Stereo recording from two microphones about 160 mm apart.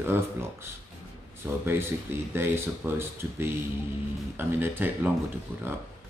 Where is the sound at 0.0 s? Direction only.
15° right (ahead or behind).